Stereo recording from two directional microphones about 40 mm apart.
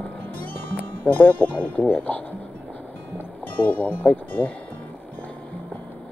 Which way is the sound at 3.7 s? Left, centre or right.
Left.